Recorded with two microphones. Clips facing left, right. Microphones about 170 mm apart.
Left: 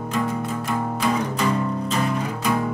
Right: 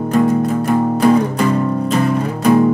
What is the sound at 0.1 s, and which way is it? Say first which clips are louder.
Music: right 11 dB; 40° right (ahead or behind).